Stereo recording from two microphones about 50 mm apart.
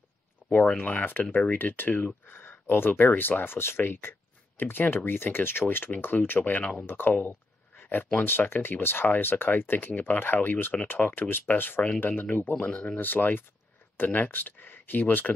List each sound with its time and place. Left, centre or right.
0.4 s a sound: centre
0.7 s speech: left
2.3 s speech: left
6.6 s speech: left
6.9 s speech: left
7.2 s a sound: left
8.3 s speech: left
12.1 s speech: left
12.6 s speech: left
13.0 s speech: left